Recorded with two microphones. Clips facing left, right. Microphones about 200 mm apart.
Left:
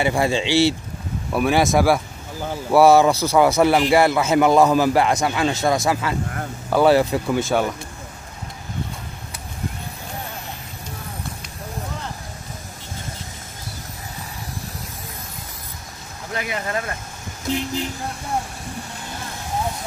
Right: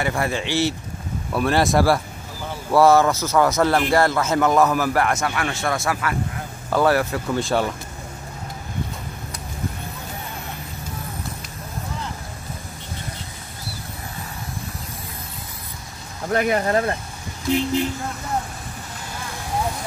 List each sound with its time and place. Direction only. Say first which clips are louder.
0.0 s a man's voice: left 4 dB; 20° left (ahead or behind)
1.3 s a man's voice: left 1 dB; 5° left (ahead or behind)
7.3 s speech: even; centre (ahead or behind)
16.3 s speech: right 7 dB; 50° right (ahead or behind)